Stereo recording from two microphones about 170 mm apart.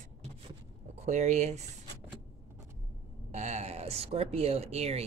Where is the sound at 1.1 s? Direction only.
40° right (ahead or behind).